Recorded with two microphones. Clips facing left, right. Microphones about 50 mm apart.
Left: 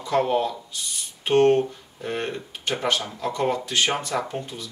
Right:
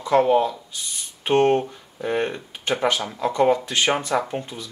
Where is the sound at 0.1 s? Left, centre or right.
Centre.